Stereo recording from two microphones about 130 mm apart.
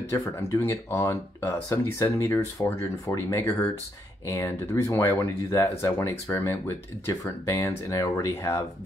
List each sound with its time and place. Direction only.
0.1 s speech: 25° left (ahead or behind)